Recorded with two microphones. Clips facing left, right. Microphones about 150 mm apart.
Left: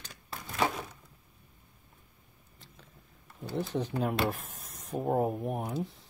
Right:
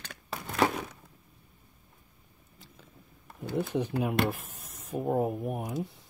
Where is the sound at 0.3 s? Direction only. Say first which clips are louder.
Right 5 dB; 75° right (ahead or behind).